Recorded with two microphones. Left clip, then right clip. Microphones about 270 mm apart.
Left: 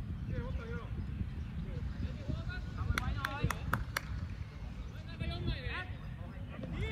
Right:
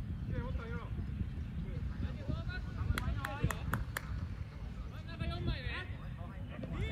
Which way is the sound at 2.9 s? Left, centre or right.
Centre.